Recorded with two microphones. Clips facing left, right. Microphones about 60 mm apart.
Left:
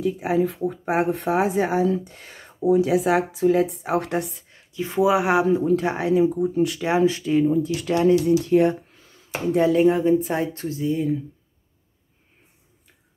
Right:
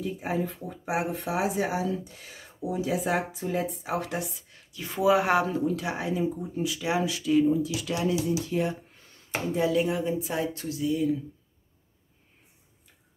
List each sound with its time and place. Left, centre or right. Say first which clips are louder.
0.0 s speech: left 8 dB; left
3.8 s speech: left 7 dB; left
4.5 s speech: left 9 dB; left
5.6 s speech: left 7 dB; left
6.8 s speech: left 6 dB; left
8.3 s speech: left 10 dB; left
9.6 s speech: left 8 dB; left